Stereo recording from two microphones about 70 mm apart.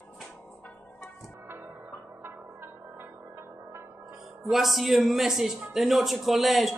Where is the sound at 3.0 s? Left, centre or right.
Right.